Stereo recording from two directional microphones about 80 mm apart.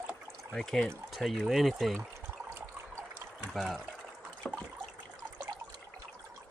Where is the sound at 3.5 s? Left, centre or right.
Centre.